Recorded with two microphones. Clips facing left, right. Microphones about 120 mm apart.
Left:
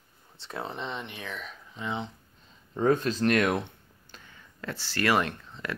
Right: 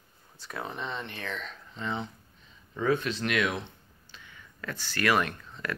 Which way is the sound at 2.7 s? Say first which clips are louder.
Left 3 dB; 40° left (ahead or behind).